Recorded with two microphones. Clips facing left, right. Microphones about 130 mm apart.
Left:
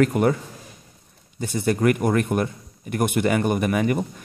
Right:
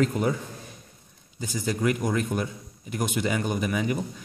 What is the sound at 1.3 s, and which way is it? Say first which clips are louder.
A man's voice: left 6 dB; 60° left (ahead or behind).